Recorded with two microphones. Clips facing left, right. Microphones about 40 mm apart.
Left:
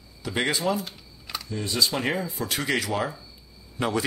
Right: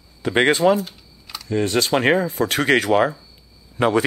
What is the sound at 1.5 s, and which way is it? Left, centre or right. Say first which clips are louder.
Speech: right 8 dB; right.